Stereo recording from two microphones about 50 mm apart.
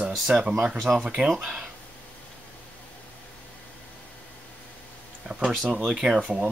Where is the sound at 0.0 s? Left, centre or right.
Right.